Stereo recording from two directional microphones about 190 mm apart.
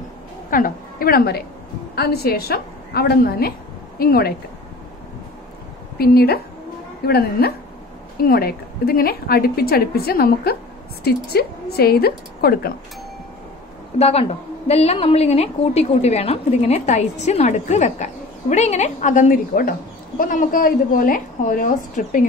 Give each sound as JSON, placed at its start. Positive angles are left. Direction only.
{"t": 0.5, "sound": "a woman's voice", "side_deg": 50}
{"t": 5.9, "sound": "a woman's voice", "side_deg": 55}
{"t": 13.9, "sound": "a woman's voice", "side_deg": 35}